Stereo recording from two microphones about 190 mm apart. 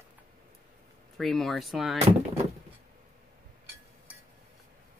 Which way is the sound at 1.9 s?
35° right (ahead or behind).